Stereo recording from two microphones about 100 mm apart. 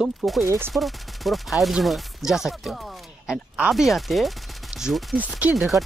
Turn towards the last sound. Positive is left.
turn(degrees=0)  # may be behind; listen again after turning